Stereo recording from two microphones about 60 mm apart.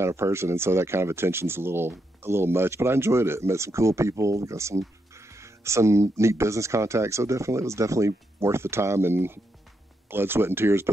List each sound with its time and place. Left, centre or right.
0.0 s speech: right